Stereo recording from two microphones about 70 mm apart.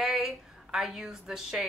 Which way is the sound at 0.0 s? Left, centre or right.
Centre.